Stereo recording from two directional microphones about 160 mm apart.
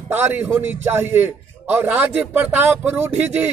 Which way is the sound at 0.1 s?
10° right (ahead or behind).